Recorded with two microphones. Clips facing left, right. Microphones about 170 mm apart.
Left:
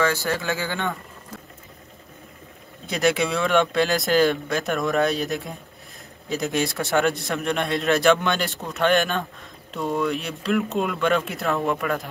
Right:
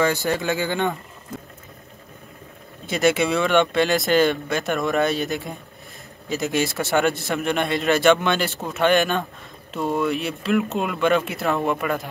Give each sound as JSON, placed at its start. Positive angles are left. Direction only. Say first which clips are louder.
{"t": 0.0, "sound": "speech", "louder": "right 2 dB", "side_deg": -20}
{"t": 2.9, "sound": "a man's voice", "louder": "right 2 dB", "side_deg": 0}